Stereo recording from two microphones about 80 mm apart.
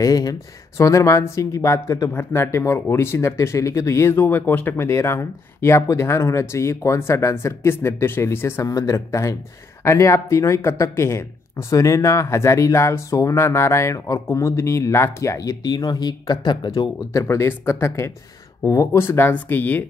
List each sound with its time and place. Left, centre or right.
0.0 s speech: left
2.0 s speech: left
8.6 s speech: left
17.0 s speech: left
18.6 s speech: left
18.9 s speech: left